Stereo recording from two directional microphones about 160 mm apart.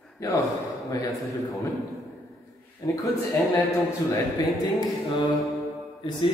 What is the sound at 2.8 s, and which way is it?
Speech, 20° left (ahead or behind).